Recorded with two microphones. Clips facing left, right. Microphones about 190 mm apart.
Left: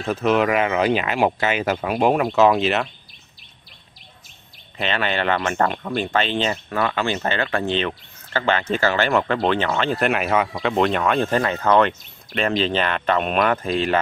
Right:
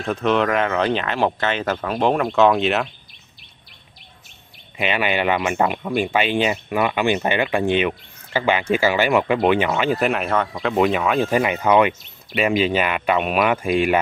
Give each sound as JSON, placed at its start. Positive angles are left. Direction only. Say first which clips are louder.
{"t": 0.0, "sound": "speech", "louder": "even", "side_deg": 5}
{"t": 4.7, "sound": "speech", "louder": "right 2 dB", "side_deg": -10}